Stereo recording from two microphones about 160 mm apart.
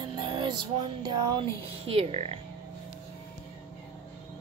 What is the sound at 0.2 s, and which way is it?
Music, 30° right (ahead or behind).